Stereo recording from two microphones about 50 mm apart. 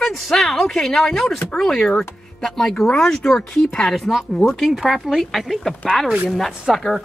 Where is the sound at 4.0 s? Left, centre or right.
Centre.